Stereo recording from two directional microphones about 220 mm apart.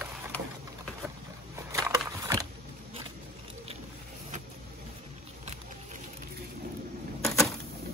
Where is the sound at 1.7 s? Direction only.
15° right (ahead or behind).